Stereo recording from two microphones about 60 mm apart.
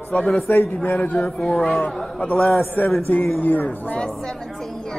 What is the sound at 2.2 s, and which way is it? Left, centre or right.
A man's voice, left.